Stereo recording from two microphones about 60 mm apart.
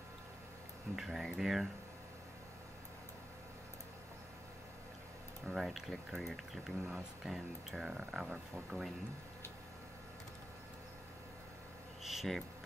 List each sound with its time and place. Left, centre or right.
0.9 s speech: centre
5.5 s speech: centre
12.0 s insect: centre